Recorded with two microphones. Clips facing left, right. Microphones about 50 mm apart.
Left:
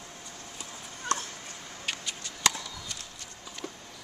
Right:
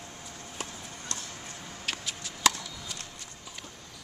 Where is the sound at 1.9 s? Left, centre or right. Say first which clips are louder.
Even; centre.